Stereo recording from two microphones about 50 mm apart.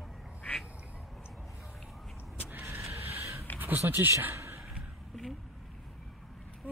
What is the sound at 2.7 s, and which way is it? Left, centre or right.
Vehicle, right.